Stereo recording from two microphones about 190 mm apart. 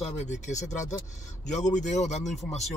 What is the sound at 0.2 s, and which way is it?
Speech, 40° left (ahead or behind).